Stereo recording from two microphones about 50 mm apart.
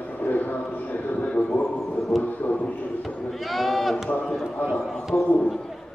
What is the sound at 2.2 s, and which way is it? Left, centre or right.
Music, left.